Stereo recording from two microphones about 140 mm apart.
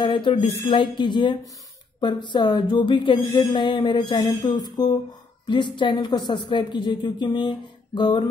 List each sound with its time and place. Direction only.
0.0 s a woman's voice: 40° left (ahead or behind)
4.6 s a sound: 30° left (ahead or behind)
5.5 s a woman's voice: 35° left (ahead or behind)